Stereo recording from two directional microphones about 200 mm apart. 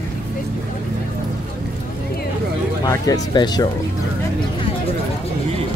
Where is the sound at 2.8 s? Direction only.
20° left (ahead or behind).